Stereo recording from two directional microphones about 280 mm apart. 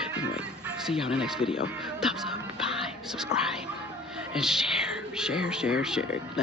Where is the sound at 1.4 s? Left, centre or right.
Centre.